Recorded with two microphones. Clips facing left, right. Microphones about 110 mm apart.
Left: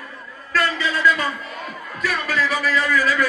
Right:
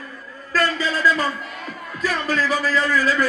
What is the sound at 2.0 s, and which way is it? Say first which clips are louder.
Speech: right 1 dB; 35° right (ahead or behind).